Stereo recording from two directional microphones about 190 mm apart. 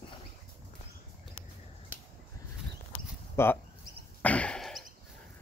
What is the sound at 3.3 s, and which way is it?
Speech, 10° left (ahead or behind).